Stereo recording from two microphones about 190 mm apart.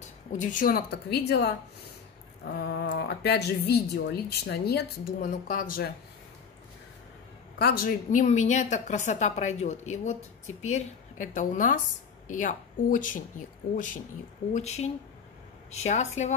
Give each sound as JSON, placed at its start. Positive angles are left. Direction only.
{"t": 0.4, "sound": "a woman's voice", "side_deg": 45}
{"t": 7.5, "sound": "a woman's voice", "side_deg": 55}
{"t": 14.5, "sound": "a woman's voice", "side_deg": 35}